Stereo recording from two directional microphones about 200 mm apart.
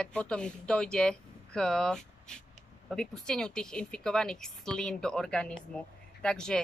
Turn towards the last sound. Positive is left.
turn(degrees=5)  # may be behind; listen again after turning